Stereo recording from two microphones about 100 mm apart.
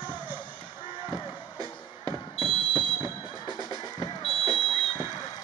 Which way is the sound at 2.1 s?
50° left (ahead or behind).